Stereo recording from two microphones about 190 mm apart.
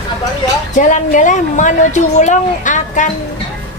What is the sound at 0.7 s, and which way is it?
A woman's voice, 40° left (ahead or behind).